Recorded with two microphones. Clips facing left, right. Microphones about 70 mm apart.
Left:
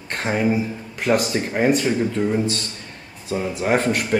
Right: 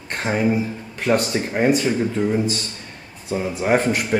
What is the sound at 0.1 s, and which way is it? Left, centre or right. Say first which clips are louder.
Speech: even; centre.